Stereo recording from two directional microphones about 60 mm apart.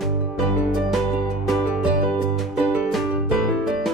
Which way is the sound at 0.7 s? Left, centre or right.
Centre.